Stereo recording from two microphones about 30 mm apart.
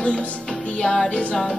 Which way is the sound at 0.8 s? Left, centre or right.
Left.